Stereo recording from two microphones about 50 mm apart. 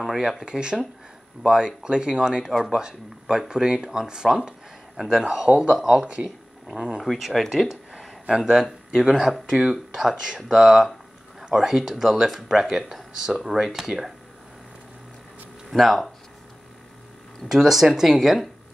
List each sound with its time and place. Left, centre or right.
0.0 s speech: centre
5.5 s speech: right
7.0 s speech: centre
8.3 s speech: centre
15.7 s speech: centre
17.5 s speech: centre